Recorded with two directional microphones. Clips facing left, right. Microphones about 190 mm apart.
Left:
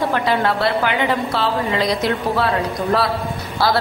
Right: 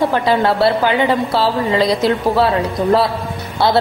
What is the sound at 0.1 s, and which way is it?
A woman's voice, 30° right (ahead or behind).